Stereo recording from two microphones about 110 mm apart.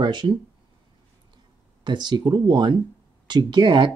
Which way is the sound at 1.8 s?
40° right (ahead or behind).